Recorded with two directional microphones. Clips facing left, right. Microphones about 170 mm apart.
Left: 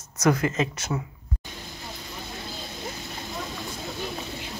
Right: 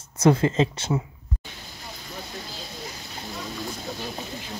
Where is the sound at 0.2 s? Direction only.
30° right (ahead or behind).